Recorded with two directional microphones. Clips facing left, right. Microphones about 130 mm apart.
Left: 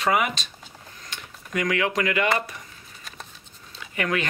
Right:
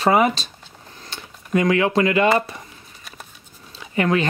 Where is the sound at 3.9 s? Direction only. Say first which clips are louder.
Right 7 dB; 30° right (ahead or behind).